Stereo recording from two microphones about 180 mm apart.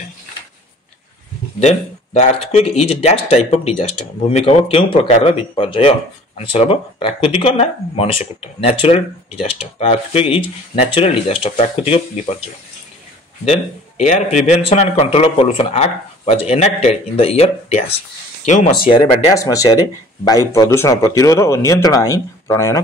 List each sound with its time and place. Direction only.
1.6 s speech: 40° left (ahead or behind)
14.0 s speech: 40° left (ahead or behind)
18.9 s a man's voice: 20° left (ahead or behind)